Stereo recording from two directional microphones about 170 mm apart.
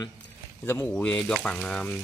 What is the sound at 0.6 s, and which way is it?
Speech, 10° left (ahead or behind).